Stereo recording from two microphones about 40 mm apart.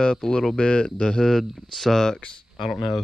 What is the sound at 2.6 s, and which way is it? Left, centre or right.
Speech, centre.